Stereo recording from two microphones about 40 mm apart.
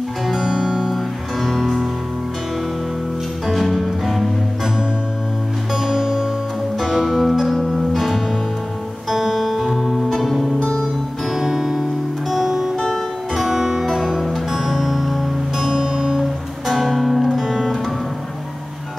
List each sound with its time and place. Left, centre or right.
0.3 s music: centre
1.4 s music: centre
3.4 s music: centre
5.9 s music: centre
7.1 s music: centre
12.7 s music: centre
15.6 s music: centre
16.6 s music: centre